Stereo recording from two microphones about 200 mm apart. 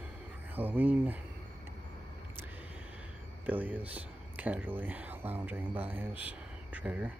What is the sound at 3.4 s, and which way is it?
Speech, 10° right (ahead or behind).